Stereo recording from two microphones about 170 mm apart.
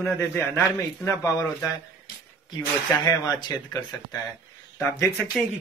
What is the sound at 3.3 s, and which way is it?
Speech, 25° left (ahead or behind).